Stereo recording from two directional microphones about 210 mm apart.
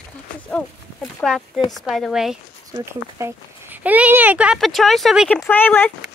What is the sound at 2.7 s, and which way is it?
Speech, 15° right (ahead or behind).